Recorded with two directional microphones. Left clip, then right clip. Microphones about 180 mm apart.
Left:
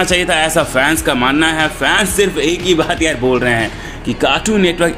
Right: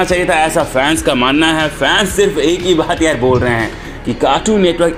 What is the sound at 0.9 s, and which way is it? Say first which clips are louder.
Speech: right 1 dB; centre (ahead or behind).